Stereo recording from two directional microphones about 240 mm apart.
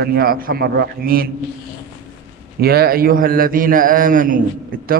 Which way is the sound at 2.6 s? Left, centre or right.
Right.